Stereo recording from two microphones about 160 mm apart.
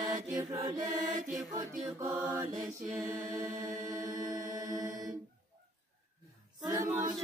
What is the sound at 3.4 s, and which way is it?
Chant, 55° right (ahead or behind).